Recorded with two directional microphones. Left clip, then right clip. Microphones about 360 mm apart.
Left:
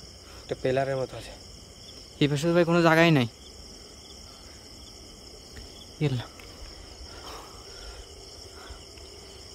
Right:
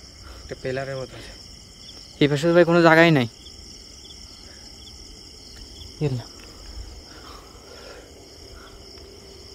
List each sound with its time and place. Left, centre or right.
0.5 s speech: centre
2.1 s speech: centre
5.9 s speech: centre